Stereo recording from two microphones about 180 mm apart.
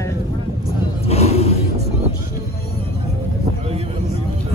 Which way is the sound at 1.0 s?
35° left (ahead or behind).